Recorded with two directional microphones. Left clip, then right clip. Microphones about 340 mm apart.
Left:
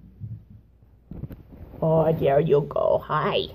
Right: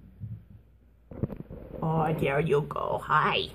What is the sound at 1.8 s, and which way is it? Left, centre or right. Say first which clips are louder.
Speech: left 8 dB; centre.